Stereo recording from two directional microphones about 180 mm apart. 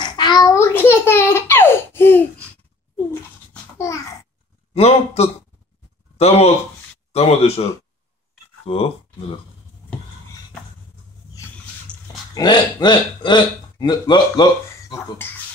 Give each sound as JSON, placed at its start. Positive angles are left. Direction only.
{"t": 0.0, "sound": "a sound", "side_deg": 25}
{"t": 3.7, "sound": "babbling", "side_deg": 15}
{"t": 4.7, "sound": "speech", "side_deg": 35}
{"t": 7.1, "sound": "a sound", "side_deg": 35}
{"t": 8.6, "sound": "speech", "side_deg": 35}
{"t": 11.9, "sound": "dog", "side_deg": 5}
{"t": 12.4, "sound": "speech", "side_deg": 20}